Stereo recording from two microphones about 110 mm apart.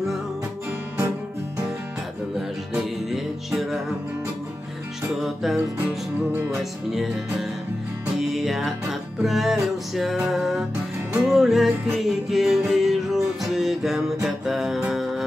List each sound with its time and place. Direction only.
3.1 s music: 5° right (ahead or behind)
5.2 s music: centre (ahead or behind)
8.2 s music: centre (ahead or behind)